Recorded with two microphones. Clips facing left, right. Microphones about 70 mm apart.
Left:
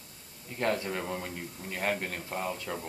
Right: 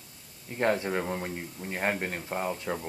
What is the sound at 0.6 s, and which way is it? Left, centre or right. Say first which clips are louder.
Speech: right 4 dB; right.